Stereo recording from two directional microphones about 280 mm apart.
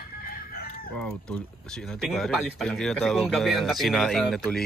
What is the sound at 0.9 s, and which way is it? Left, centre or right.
Speech, centre.